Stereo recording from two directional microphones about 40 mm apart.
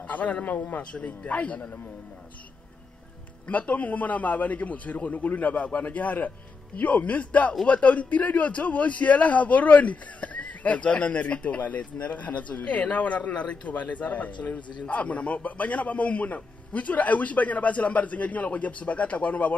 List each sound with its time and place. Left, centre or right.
0.0 s a man's voice: left
0.9 s a man's voice: left
3.4 s a man's voice: left